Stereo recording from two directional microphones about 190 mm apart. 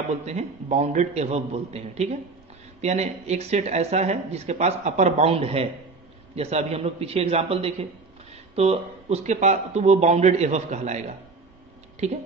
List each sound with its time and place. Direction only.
0.2 s speech: 35° right (ahead or behind)